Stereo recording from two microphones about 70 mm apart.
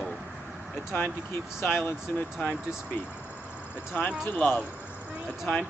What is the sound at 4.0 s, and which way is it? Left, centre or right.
Speech, left.